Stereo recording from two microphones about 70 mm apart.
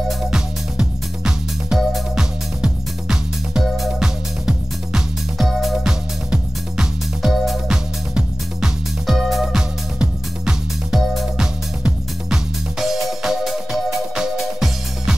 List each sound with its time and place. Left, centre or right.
0.3 s music: centre